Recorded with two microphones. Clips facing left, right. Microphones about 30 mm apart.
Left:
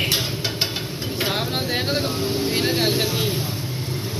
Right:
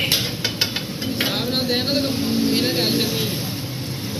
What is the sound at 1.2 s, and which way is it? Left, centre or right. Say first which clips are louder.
Speech: right 1 dB; right.